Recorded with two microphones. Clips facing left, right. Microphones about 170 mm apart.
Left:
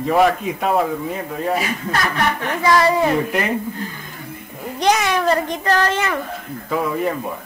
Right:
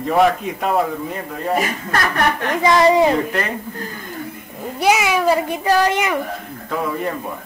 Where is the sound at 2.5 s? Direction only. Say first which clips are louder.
Right 3 dB; 20° right (ahead or behind).